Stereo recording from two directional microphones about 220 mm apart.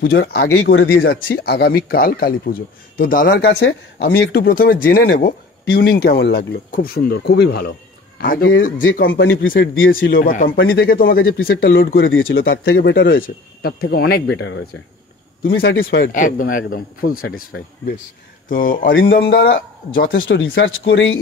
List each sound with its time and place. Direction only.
0.0 s speech: 45° left (ahead or behind)
11.4 s speech: 50° left (ahead or behind)
12.7 s speech: 55° left (ahead or behind)
15.4 s speech: 40° left (ahead or behind)
15.7 s speech: 55° left (ahead or behind)
17.5 s speech: 50° left (ahead or behind)
18.5 s speech: 40° left (ahead or behind)
20.2 s speech: 55° left (ahead or behind)